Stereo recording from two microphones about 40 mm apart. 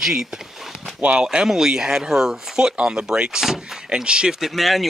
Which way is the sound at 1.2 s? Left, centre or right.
Centre.